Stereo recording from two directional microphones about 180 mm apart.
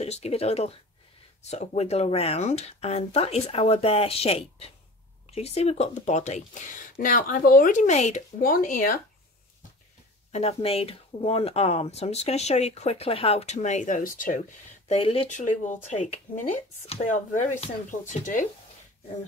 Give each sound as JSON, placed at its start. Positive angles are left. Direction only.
{"t": 0.0, "sound": "speech", "side_deg": 35}
{"t": 8.4, "sound": "speech", "side_deg": 50}
{"t": 10.3, "sound": "speech", "side_deg": 35}
{"t": 14.9, "sound": "speech", "side_deg": 35}